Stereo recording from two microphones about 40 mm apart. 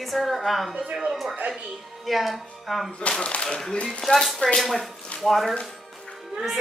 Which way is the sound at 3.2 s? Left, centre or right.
Left.